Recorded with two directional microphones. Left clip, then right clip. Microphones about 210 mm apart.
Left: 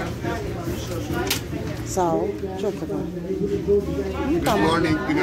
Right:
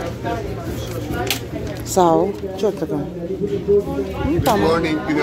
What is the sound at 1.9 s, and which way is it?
Speech, 35° right (ahead or behind).